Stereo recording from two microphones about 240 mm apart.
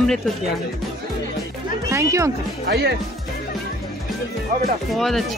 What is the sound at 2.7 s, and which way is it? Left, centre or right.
Speech, right.